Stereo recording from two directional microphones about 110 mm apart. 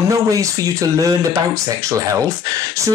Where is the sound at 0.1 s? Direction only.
30° right (ahead or behind).